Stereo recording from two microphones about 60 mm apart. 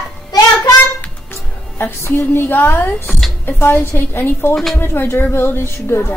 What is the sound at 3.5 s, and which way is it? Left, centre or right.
Speech, left.